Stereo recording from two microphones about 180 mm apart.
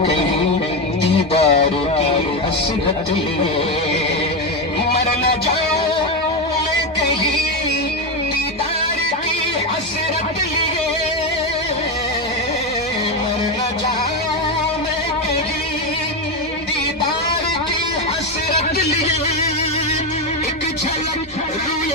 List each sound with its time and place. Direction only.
1.3 s music: 35° left (ahead or behind)